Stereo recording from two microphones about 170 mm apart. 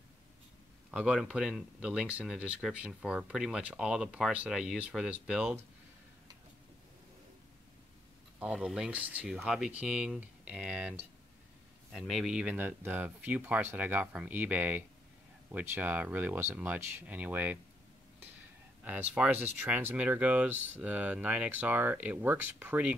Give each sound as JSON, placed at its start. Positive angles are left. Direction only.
{"t": 0.9, "sound": "speech", "side_deg": -5}
{"t": 8.4, "sound": "speech", "side_deg": -5}
{"t": 18.9, "sound": "speech", "side_deg": -10}